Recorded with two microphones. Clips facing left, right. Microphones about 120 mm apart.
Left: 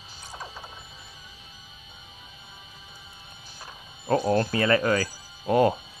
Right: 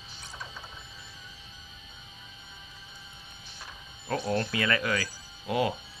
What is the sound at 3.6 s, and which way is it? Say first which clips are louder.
Speech: left 4 dB; 40° left (ahead or behind).